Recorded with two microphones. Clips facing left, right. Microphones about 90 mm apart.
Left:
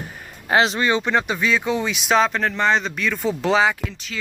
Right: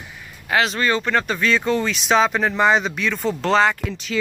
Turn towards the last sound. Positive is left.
turn(degrees=5)  # may be behind; listen again after turning